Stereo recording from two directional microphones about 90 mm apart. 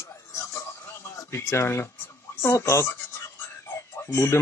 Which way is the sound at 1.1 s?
35° left (ahead or behind).